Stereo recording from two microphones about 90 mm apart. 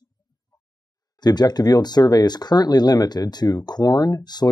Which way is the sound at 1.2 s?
50° left (ahead or behind).